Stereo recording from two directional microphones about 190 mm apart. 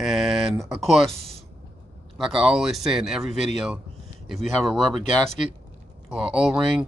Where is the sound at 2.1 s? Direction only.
Centre (ahead or behind).